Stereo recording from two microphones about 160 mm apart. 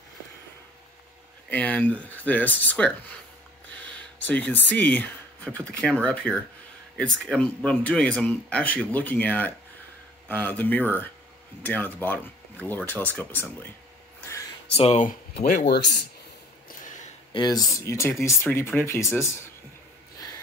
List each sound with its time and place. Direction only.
1.5 s speech: 10° left (ahead or behind)
4.2 s speech: 10° left (ahead or behind)
14.7 s speech: 40° left (ahead or behind)
15.3 s speech: 70° left (ahead or behind)
16.6 s a sound: 55° left (ahead or behind)
17.3 s speech: 25° left (ahead or behind)